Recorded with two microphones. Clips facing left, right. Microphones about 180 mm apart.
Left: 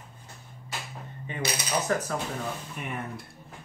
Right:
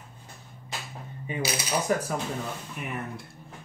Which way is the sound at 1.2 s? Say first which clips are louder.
Right 2 dB; 10° right (ahead or behind).